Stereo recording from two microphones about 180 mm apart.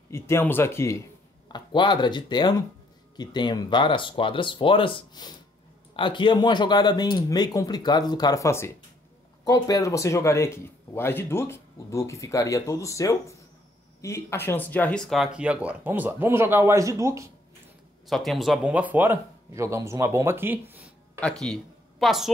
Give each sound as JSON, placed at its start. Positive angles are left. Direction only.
{"t": 0.1, "sound": "speech", "side_deg": 15}
{"t": 1.5, "sound": "speech", "side_deg": 25}
{"t": 18.0, "sound": "speech", "side_deg": 0}
{"t": 21.2, "sound": "speech", "side_deg": 5}